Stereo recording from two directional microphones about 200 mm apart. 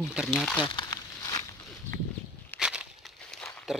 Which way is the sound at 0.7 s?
20° left (ahead or behind).